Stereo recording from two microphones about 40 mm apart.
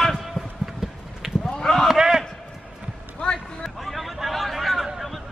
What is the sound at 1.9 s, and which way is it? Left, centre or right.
Basketball bounce, centre.